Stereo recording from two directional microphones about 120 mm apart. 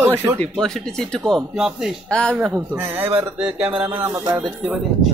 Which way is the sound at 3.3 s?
5° right (ahead or behind).